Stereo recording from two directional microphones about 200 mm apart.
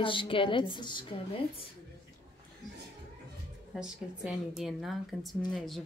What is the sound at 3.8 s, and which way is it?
A woman's voice, 5° right (ahead or behind).